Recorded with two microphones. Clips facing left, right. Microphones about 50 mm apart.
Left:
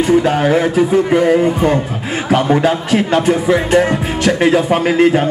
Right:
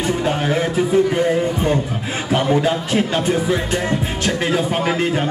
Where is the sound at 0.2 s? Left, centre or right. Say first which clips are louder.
Left 6 dB; left.